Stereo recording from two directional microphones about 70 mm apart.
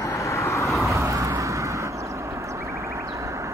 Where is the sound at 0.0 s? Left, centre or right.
Left.